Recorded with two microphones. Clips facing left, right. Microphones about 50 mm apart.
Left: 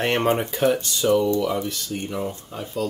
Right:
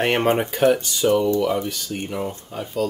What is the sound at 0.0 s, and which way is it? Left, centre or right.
Speech, centre.